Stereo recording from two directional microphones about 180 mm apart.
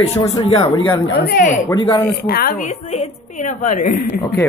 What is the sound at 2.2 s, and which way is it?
A woman's voice, 55° left (ahead or behind).